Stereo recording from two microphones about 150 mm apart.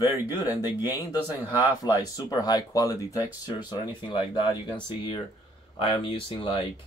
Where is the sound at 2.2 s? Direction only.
25° left (ahead or behind).